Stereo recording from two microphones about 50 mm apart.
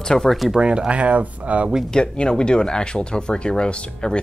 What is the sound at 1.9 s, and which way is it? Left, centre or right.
Speech, centre.